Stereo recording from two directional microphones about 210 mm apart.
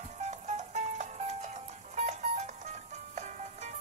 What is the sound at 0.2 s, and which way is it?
Music, 35° right (ahead or behind).